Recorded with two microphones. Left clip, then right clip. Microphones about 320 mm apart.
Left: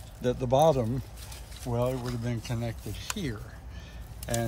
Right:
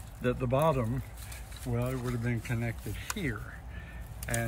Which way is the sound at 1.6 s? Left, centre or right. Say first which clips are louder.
Left 6 dB; left.